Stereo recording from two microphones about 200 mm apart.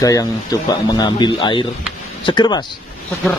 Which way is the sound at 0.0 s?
20° left (ahead or behind).